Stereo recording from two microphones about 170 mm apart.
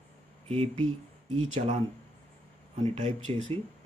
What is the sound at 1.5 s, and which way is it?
Speech, 35° right (ahead or behind).